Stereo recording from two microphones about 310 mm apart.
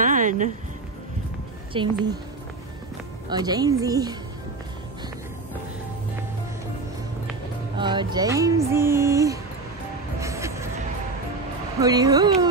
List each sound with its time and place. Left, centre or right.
0.0 s a sound: right
1.7 s music: centre
3.3 s music: centre
7.7 s music: centre
10.2 s vehicle: centre
11.8 s music: centre